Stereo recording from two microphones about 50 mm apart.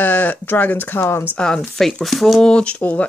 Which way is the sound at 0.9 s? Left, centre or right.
Left.